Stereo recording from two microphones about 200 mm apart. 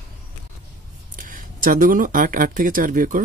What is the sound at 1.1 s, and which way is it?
Speech, 45° right (ahead or behind).